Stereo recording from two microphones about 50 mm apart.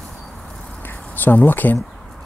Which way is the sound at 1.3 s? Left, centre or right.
Left.